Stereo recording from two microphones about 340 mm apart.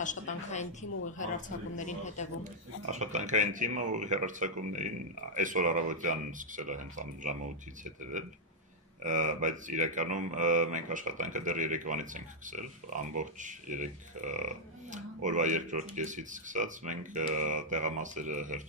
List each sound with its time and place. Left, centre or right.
0.0 s speech: left
2.9 s speech: right